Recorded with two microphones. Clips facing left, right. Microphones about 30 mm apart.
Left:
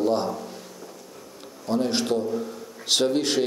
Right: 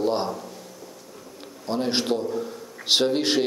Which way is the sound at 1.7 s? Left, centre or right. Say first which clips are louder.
Even; right.